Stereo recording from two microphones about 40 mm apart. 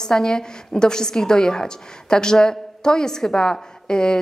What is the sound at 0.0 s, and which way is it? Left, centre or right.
A woman's voice, centre.